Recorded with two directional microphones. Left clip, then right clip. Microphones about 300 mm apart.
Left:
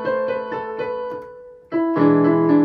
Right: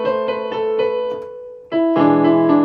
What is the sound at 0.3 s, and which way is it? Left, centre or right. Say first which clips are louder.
Music: right 5 dB; right.